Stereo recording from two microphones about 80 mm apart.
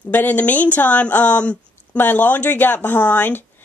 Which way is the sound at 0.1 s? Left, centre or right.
Left.